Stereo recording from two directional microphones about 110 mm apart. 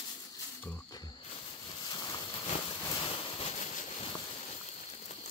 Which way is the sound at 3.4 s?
80° left.